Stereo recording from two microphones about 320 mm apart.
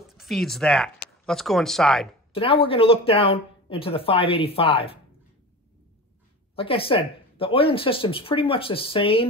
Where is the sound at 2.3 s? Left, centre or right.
Centre.